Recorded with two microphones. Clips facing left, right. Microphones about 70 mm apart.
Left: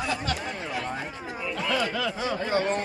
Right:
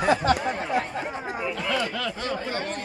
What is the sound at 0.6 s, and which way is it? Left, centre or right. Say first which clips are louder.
Speech: right 5 dB; right.